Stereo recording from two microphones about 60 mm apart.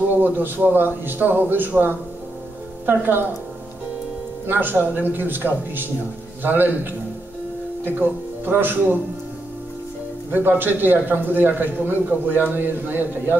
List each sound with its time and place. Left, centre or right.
0.1 s speech: right
4.5 s speech: right
10.3 s speech: right